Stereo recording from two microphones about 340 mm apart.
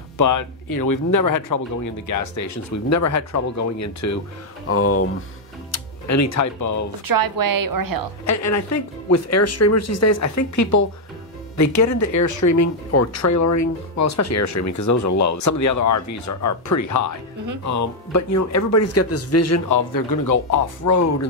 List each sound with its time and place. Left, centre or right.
0.2 s speech: left
4.6 s speech: left
7.1 s a woman's voice: right
8.3 s speech: left
19.9 s speech: left